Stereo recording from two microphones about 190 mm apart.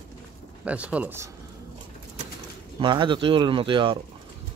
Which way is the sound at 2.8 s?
25° right (ahead or behind).